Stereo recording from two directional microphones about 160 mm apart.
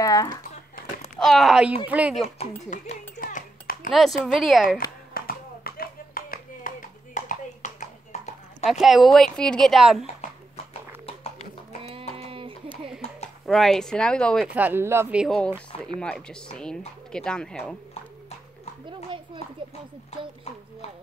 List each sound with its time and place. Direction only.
0.0 s a sound: 20° left (ahead or behind)
0.7 s a sound: 60° left (ahead or behind)
1.1 s speech: centre (ahead or behind)
2.2 s a child's voice: 40° left (ahead or behind); by 3.9 s 60° left (ahead or behind)
3.9 s speech: centre (ahead or behind)
5.1 s clapping: 70° left (ahead or behind)
7.2 s clip-clop: 50° left (ahead or behind)
8.6 s speech: centre (ahead or behind)
11.8 s a sound: 35° right (ahead or behind)
13.5 s speech: centre (ahead or behind)
14.4 s speech: 10° right (ahead or behind); by 17.7 s 5° left (ahead or behind)
19.0 s children playing: 30° right (ahead or behind)